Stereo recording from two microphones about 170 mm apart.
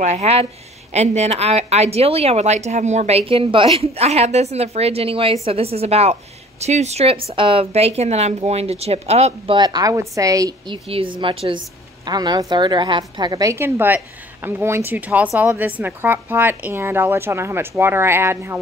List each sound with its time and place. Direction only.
0.0 s a woman's voice: 40° right (ahead or behind)
9.6 s a woman's voice: 25° right (ahead or behind)
10.9 s a woman's voice: 30° right (ahead or behind); by 18.6 s 15° right (ahead or behind)